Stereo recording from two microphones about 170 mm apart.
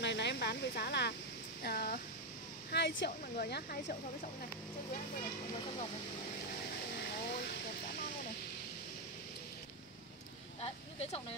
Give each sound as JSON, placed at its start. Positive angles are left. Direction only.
{"t": 0.0, "sound": "speech", "side_deg": 90}
{"t": 7.2, "sound": "a sound", "side_deg": 70}
{"t": 10.6, "sound": "speech", "side_deg": 35}